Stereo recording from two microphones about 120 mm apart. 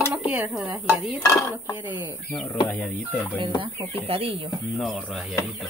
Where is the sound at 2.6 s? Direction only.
15° left (ahead or behind).